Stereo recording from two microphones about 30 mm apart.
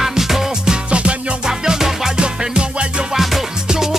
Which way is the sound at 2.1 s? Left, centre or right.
Right.